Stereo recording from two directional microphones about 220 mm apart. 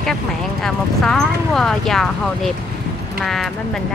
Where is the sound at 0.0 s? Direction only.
Centre (ahead or behind).